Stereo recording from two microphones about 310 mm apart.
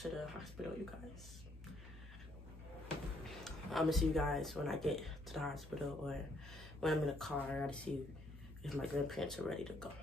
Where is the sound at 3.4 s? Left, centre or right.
Centre.